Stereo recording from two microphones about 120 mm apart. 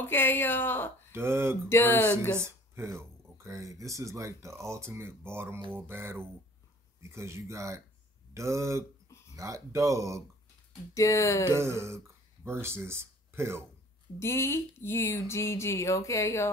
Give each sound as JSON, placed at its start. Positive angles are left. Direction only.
{"t": 0.0, "sound": "speech", "side_deg": 15}
{"t": 1.1, "sound": "speech", "side_deg": -20}
{"t": 1.7, "sound": "speech", "side_deg": 20}
{"t": 2.3, "sound": "speech", "side_deg": -20}
{"t": 11.0, "sound": "speech", "side_deg": 25}
{"t": 11.4, "sound": "speech", "side_deg": -20}
{"t": 14.2, "sound": "speech", "side_deg": 20}